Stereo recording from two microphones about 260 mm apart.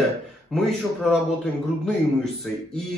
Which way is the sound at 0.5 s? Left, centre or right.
Centre.